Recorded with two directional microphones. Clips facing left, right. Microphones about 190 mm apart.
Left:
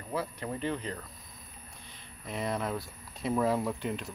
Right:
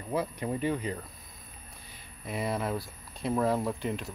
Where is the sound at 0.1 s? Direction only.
15° right (ahead or behind).